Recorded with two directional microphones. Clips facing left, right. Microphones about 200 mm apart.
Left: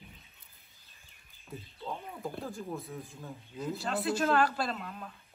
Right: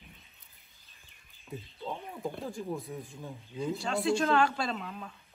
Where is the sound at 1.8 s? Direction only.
Centre (ahead or behind).